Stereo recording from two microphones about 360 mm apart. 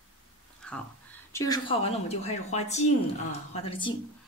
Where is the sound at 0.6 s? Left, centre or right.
Centre.